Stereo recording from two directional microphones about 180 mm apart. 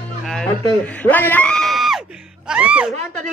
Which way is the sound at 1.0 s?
10° left (ahead or behind).